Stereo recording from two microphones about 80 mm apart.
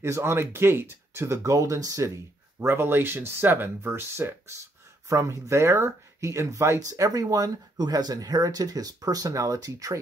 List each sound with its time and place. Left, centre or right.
0.0 s speech: right
2.6 s speech: right
5.0 s speech: right